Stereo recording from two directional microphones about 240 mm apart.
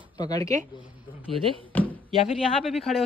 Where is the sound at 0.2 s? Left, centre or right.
Centre.